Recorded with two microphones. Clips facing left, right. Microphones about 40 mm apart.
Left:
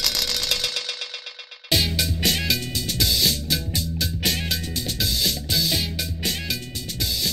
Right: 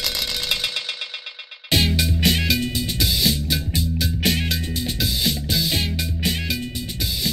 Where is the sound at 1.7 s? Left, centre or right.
Centre.